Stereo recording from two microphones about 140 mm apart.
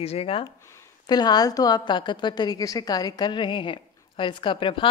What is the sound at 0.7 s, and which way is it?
A woman's voice, 25° left (ahead or behind).